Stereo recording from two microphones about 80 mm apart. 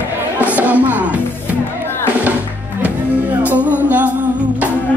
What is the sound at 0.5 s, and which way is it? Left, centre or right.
Speech, centre.